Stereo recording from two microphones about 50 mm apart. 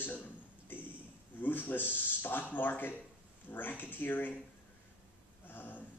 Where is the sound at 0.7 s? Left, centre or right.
Left.